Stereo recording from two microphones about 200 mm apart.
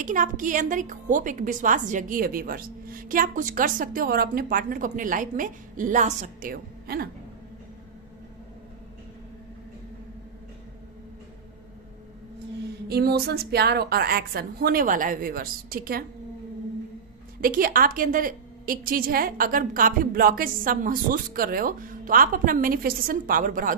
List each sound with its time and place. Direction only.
0.0 s a woman's voice: 40° right (ahead or behind)
12.8 s a woman's voice: 50° right (ahead or behind)
17.4 s a woman's voice: 45° right (ahead or behind)